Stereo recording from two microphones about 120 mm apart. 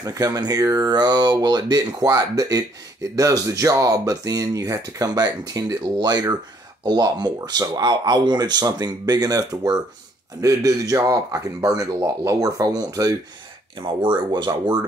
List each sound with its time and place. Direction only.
0.0 s a man's voice: 30° right (ahead or behind)